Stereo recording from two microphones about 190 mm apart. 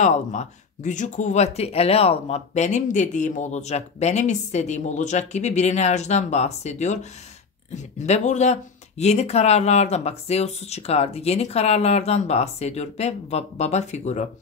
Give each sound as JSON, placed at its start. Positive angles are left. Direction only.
{"t": 0.0, "sound": "speech", "side_deg": 40}